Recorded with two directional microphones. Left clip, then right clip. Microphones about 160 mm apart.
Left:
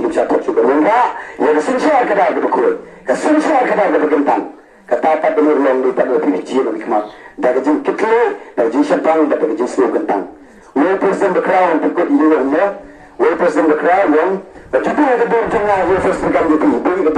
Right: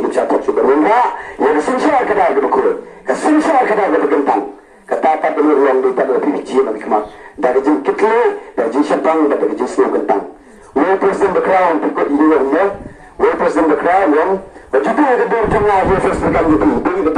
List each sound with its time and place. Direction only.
0.1 s a man's voice: 35° left (ahead or behind)